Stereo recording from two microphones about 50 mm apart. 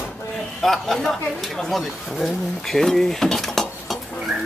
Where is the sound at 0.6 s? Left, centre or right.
Centre.